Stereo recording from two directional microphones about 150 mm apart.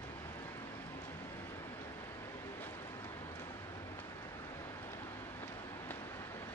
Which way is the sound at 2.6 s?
15° left (ahead or behind).